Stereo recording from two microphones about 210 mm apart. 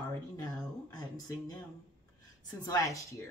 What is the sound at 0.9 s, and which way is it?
A woman's voice, 20° left (ahead or behind).